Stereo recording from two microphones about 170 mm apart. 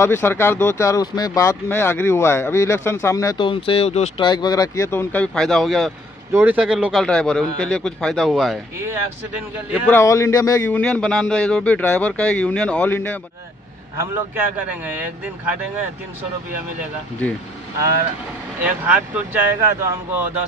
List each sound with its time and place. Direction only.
0.0 s speech: 15° left (ahead or behind); by 4.3 s 40° left (ahead or behind)
4.3 s speech: 25° left (ahead or behind); by 5.9 s centre (ahead or behind)
6.3 s a man's voice: 10° right (ahead or behind)
9.8 s speech: 15° left (ahead or behind)
10.8 s speech: 5° left (ahead or behind)
13.9 s a man's voice: 10° right (ahead or behind)
17.2 s speech: 10° left (ahead or behind)
18.6 s a man's voice: 10° right (ahead or behind)